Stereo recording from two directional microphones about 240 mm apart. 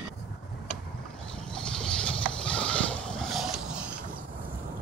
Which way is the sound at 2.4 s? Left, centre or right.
Centre.